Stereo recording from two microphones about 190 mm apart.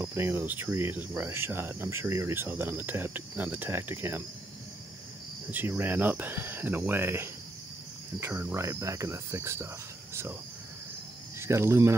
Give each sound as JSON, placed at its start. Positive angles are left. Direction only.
{"t": 0.0, "sound": "cricket", "side_deg": -10}
{"t": 5.5, "sound": "cricket", "side_deg": -10}
{"t": 11.3, "sound": "speech", "side_deg": -15}